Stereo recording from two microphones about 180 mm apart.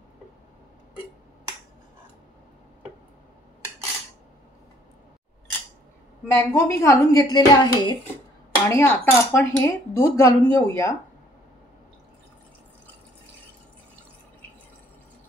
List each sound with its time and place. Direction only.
6.3 s speech: 15° left (ahead or behind)